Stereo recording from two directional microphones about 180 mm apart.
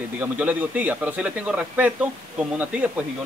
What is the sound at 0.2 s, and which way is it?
Speech, 10° right (ahead or behind).